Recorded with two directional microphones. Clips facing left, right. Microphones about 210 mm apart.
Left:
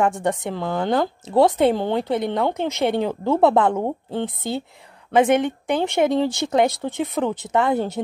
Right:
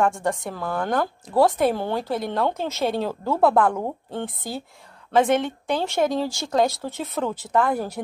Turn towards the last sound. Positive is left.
turn(degrees=20)  # may be behind; listen again after turning